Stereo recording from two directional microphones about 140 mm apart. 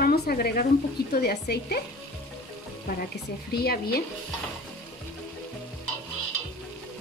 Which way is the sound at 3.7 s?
90° left.